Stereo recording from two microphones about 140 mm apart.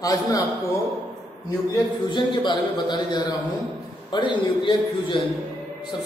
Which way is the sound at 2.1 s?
35° left (ahead or behind).